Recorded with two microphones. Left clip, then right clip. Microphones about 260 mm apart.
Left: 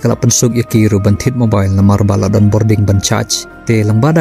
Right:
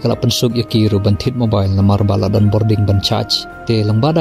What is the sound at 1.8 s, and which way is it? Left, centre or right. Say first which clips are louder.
Speech: left 3 dB; left.